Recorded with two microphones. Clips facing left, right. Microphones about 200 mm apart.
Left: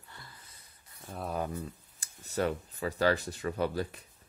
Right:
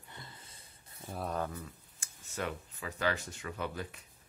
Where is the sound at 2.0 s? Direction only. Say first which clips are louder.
Left 8 dB; 35° left (ahead or behind).